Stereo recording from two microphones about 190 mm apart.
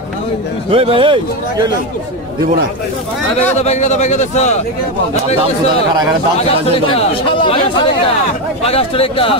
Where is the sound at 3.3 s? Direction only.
35° left (ahead or behind).